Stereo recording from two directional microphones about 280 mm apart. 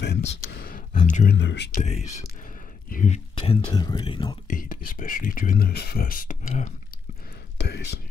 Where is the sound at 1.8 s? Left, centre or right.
Left.